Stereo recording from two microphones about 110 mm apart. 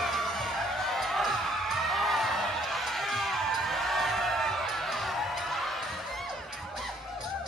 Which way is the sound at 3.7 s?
Centre (ahead or behind).